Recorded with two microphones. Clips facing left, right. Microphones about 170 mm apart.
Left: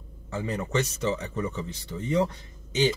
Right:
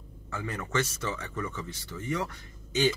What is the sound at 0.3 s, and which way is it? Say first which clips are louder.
A man's voice: left 4 dB; 25° left (ahead or behind).